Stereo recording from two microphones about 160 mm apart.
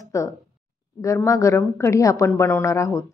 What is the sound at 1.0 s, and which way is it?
A woman's voice, 20° left (ahead or behind).